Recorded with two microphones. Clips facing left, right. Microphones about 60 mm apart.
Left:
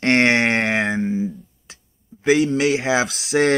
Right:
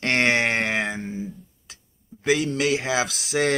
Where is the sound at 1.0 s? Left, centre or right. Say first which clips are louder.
Left 9 dB; left.